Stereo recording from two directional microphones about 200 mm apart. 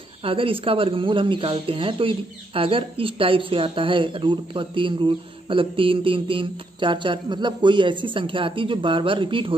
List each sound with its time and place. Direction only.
0.2 s speech: 25° right (ahead or behind)